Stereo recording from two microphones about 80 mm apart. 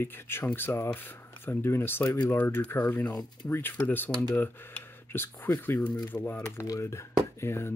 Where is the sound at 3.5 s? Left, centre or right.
Left.